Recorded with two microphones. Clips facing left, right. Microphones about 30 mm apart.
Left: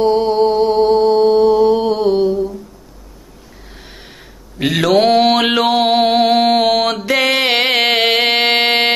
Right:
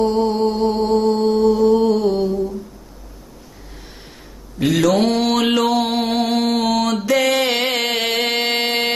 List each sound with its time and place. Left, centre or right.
0.1 s mantra: left
1.0 s mantra: centre
2.1 s a sound: centre
4.6 s speech: left
4.9 s mantra: centre
5.2 s mantra: left
7.1 s music: left